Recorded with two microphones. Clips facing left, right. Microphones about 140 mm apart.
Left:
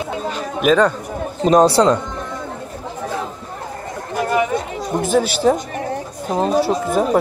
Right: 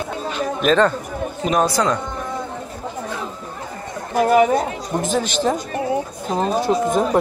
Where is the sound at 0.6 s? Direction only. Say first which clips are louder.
Left 2 dB; 10° left (ahead or behind).